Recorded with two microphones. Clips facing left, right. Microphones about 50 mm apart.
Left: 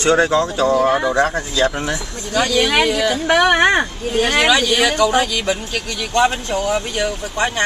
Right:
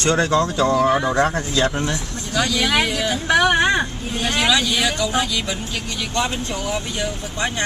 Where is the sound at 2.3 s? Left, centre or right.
Left.